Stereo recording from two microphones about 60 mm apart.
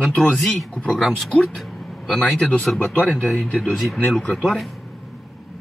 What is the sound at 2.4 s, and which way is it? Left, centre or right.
Speech, left.